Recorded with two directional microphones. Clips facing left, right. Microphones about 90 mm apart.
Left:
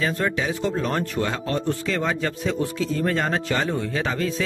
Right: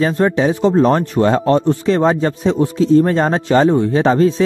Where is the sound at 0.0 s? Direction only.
35° right (ahead or behind).